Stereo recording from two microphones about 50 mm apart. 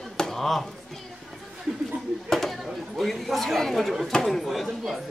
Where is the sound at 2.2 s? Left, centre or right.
Centre.